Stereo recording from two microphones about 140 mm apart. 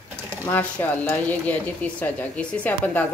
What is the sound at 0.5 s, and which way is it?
A woman's voice, 10° left (ahead or behind).